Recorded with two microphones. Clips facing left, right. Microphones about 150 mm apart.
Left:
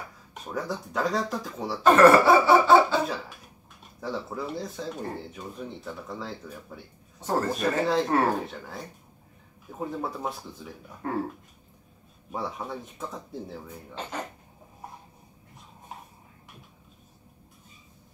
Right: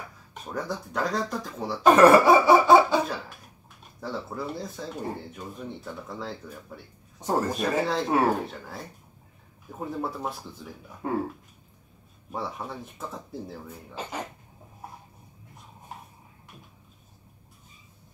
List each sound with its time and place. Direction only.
0.3 s speech: centre (ahead or behind)
1.8 s speech: 15° right (ahead or behind)
4.0 s speech: centre (ahead or behind)
7.2 s speech: 15° right (ahead or behind)
7.5 s speech: centre (ahead or behind)
11.0 s speech: 15° right (ahead or behind)
12.3 s speech: centre (ahead or behind)